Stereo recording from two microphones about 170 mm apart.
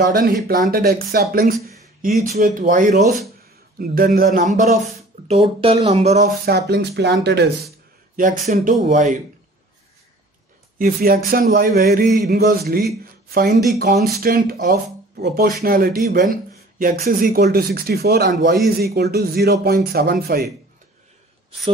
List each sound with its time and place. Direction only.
0.0 s speech: 60° right (ahead or behind)
5.3 s speech: 35° right (ahead or behind)
6.4 s speech: 75° right (ahead or behind)
8.2 s speech: 50° right (ahead or behind)
10.8 s speech: 60° right (ahead or behind)